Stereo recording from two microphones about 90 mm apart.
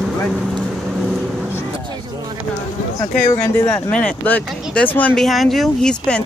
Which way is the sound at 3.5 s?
25° left (ahead or behind).